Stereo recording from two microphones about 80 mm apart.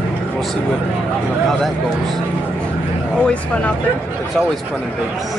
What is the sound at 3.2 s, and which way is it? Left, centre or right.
Speech, centre.